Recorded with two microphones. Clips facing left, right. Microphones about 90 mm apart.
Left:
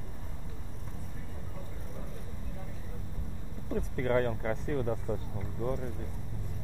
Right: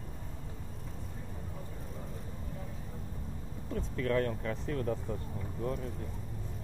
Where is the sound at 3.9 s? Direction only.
30° left (ahead or behind).